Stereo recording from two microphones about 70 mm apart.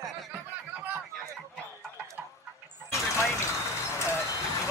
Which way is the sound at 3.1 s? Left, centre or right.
Left.